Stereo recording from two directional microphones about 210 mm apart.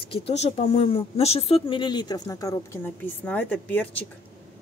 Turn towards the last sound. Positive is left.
turn(degrees=5)  # may be behind; listen again after turning